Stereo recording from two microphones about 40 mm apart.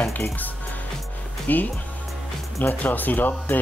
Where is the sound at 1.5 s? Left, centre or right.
Left.